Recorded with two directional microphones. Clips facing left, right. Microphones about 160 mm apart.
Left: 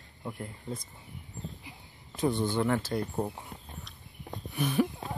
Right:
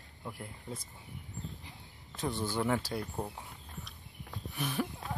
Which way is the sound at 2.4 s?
10° right (ahead or behind).